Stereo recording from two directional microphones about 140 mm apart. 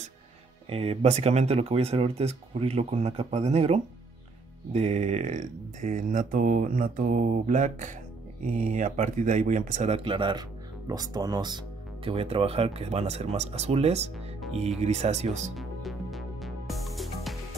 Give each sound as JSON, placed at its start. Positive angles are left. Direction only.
{"t": 0.7, "sound": "speech", "side_deg": -45}
{"t": 8.5, "sound": "speech", "side_deg": -75}
{"t": 15.5, "sound": "music", "side_deg": 0}